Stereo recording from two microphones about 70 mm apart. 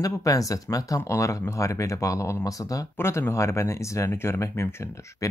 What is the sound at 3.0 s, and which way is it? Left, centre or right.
Speech, left.